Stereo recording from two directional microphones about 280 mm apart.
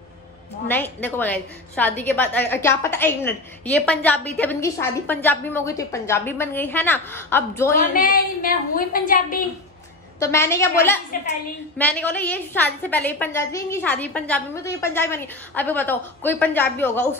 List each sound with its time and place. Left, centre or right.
0.7 s a woman's voice: centre
7.9 s a woman's voice: left
10.2 s a woman's voice: centre